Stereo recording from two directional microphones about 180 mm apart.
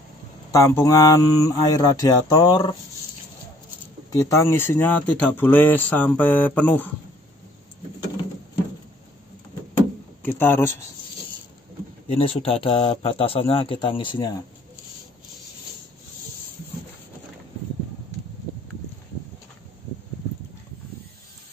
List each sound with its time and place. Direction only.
0.5 s speech: 15° left (ahead or behind)
4.1 s speech: 20° left (ahead or behind)
10.2 s speech: 10° left (ahead or behind)
12.1 s a man's voice: 30° left (ahead or behind)